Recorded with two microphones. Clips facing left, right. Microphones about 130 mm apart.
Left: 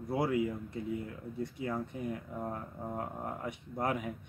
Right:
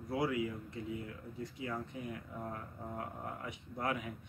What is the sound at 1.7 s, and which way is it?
Speech, 30° left (ahead or behind).